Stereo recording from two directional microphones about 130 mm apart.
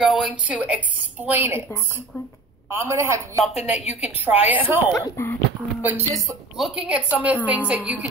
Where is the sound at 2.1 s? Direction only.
15° left (ahead or behind).